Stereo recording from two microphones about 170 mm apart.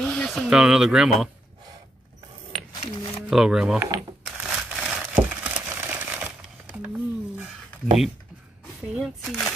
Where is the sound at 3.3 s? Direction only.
5° right (ahead or behind).